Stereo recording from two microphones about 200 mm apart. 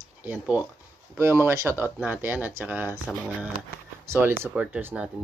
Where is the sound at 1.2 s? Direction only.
15° right (ahead or behind).